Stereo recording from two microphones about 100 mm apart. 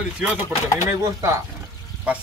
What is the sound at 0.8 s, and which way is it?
Speech, 30° right (ahead or behind).